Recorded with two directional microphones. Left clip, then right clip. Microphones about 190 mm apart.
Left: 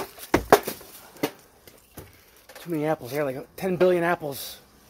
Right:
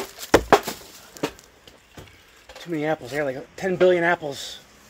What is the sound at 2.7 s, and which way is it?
Speech, 55° left (ahead or behind).